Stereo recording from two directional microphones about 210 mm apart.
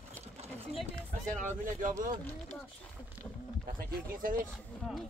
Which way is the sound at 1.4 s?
40° right (ahead or behind).